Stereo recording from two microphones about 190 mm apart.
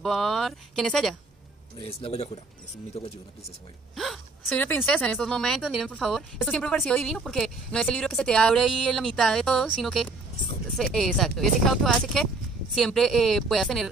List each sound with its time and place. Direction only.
0.0 s speech: centre (ahead or behind)
1.8 s speech: 30° left (ahead or behind)
3.9 s speech: centre (ahead or behind)